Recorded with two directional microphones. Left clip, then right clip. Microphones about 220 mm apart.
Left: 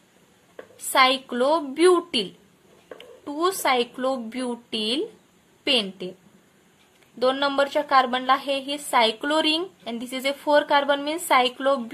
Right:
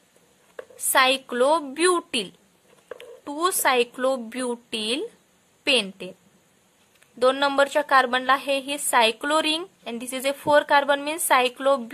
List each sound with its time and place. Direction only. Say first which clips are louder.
0.9 s a woman's voice: even; 30° right (ahead or behind)
3.3 s a woman's voice: even; 30° right (ahead or behind)
7.2 s a woman's voice: right 2 dB; 30° right (ahead or behind)